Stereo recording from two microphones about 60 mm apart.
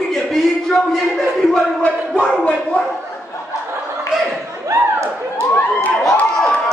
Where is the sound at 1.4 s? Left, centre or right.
Centre.